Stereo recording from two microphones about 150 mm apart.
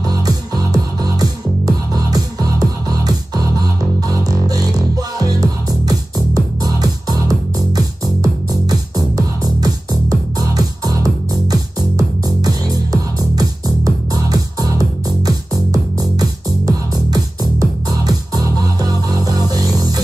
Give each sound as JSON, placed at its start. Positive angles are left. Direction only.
{"t": 0.0, "sound": "music", "side_deg": -25}